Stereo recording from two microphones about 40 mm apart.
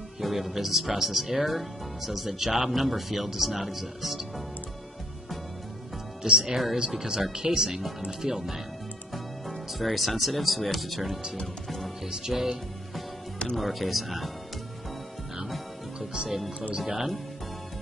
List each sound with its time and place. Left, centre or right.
0.2 s speech: centre
6.2 s speech: centre
9.1 s speech: centre
15.3 s music: centre
16.3 s speech: centre